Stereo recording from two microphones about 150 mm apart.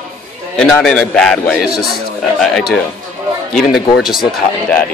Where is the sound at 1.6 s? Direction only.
90° left.